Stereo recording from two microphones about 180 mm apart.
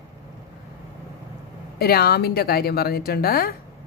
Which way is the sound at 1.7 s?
60° left (ahead or behind).